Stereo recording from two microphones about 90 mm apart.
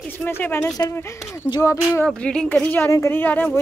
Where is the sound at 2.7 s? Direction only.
30° left (ahead or behind).